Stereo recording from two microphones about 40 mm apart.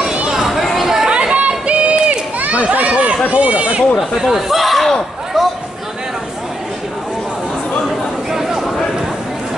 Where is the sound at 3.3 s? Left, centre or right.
Right.